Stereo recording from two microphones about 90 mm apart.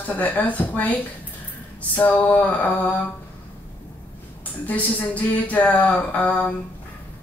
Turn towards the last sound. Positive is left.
turn(degrees=15)  # may be behind; listen again after turning